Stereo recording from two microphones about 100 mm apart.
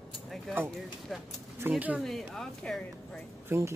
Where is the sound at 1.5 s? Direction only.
20° right (ahead or behind).